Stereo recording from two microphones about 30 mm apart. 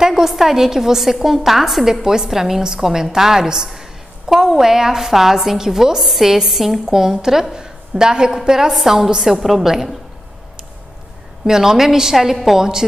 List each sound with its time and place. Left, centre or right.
0.0 s a sound: centre
0.3 s a woman's voice: centre
2.0 s a woman's voice: centre
9.4 s a woman's voice: centre
11.4 s a woman's voice: centre